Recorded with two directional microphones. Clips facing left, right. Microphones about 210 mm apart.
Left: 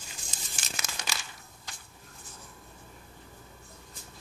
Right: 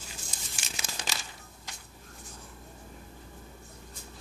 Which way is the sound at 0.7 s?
30° right (ahead or behind).